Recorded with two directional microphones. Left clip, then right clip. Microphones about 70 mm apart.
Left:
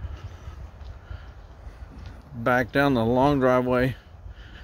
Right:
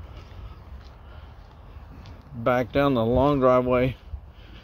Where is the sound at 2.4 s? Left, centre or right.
Left.